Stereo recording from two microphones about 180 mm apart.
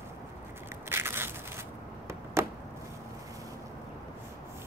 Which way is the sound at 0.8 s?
15° right (ahead or behind).